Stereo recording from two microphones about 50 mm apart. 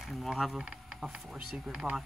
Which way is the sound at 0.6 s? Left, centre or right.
Centre.